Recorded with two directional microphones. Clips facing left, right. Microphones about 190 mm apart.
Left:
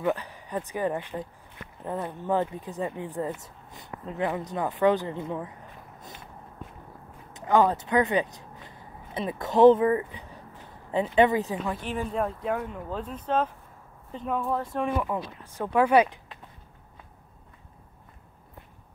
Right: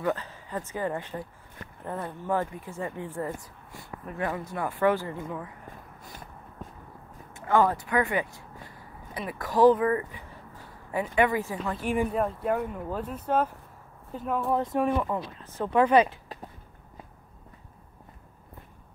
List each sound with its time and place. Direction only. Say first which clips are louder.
0.0 s speech: left 2 dB; 15° left (ahead or behind)
7.3 s a sound: left 1 dB; 15° left (ahead or behind)
11.1 s speech: left 3 dB; 20° left (ahead or behind)
11.7 s speech: right 3 dB; 10° right (ahead or behind)
14.5 s speech: right 3 dB; 20° right (ahead or behind)
14.8 s speech: right 2 dB; centre (ahead or behind)
15.3 s speech: right 1 dB; 10° left (ahead or behind)